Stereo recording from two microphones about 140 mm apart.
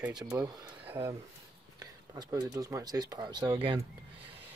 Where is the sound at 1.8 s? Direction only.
25° right (ahead or behind).